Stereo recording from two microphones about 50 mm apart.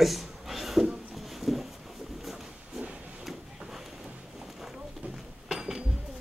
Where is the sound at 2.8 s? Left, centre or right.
Right.